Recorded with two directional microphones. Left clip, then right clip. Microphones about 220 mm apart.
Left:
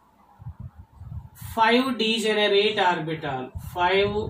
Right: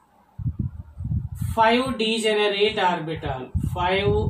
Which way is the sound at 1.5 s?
15° right (ahead or behind).